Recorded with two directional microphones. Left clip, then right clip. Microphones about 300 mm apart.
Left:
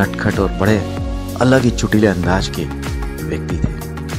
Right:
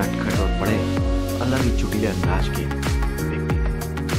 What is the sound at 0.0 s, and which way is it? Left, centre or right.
Speech, left.